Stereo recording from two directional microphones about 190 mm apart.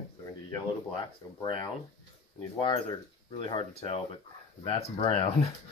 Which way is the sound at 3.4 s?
30° left (ahead or behind).